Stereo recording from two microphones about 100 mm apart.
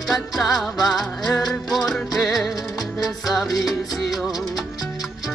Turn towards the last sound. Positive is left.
turn(degrees=0)  # may be behind; listen again after turning